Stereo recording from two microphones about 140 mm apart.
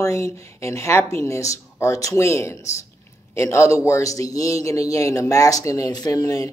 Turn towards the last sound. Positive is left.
turn(degrees=25)  # may be behind; listen again after turning